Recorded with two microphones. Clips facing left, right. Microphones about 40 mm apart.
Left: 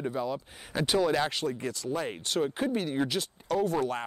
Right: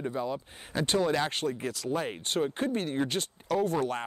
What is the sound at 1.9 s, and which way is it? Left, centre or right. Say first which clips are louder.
Speech: even; right.